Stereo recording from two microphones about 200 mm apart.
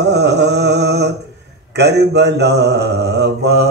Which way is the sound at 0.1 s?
55° right (ahead or behind).